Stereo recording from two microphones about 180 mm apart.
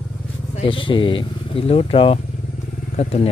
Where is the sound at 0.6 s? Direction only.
30° left (ahead or behind).